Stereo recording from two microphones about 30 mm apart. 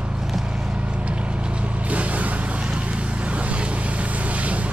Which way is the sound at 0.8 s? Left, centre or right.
Right.